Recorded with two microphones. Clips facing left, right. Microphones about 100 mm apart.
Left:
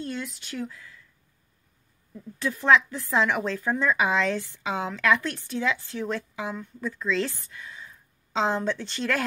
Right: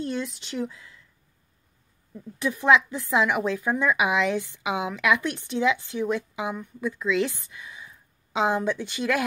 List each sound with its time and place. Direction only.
0.0 s speech: 20° right (ahead or behind)
2.1 s speech: 15° right (ahead or behind)